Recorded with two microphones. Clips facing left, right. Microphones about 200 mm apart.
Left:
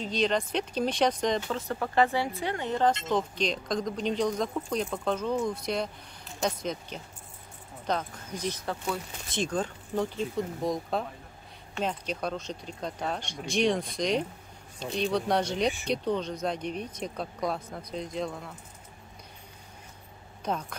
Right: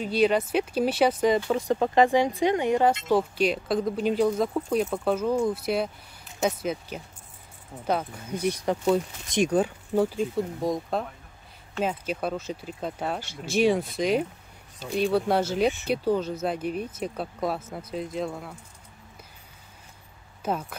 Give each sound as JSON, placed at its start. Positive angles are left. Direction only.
{"t": 0.0, "sound": "speech", "side_deg": -10}
{"t": 20.4, "sound": "speech", "side_deg": -5}